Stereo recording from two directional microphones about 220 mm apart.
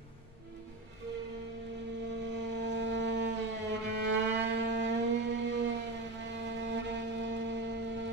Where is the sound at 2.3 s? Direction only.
50° right (ahead or behind).